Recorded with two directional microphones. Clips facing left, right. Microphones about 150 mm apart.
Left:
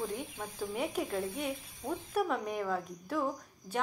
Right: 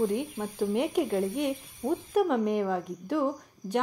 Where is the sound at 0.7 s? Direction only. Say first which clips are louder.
Right 7 dB; 70° right (ahead or behind).